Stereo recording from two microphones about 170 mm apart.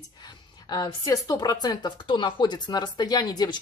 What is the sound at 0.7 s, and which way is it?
Speech, 20° left (ahead or behind).